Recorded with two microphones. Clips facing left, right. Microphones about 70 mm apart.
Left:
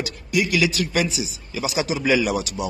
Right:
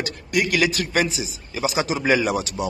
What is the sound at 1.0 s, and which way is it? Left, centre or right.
A man's voice, right.